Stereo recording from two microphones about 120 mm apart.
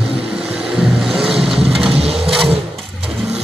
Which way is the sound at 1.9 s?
55° right (ahead or behind).